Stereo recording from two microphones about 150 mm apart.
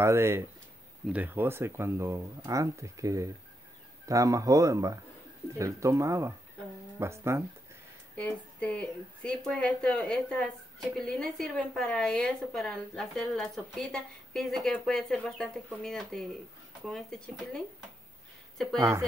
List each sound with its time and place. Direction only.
0.0 s speech: 15° right (ahead or behind)
8.2 s a woman's voice: 10° left (ahead or behind)
18.8 s speech: 20° right (ahead or behind)